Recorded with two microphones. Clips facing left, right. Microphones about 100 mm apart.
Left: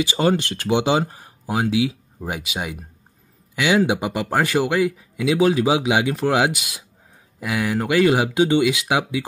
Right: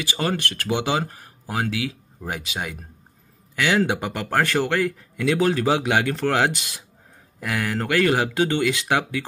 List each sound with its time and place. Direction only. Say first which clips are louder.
0.0 s speech: left 6 dB; 20° left (ahead or behind)